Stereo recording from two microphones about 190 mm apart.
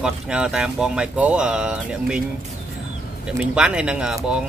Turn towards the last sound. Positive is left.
turn(degrees=-5)  # may be behind; listen again after turning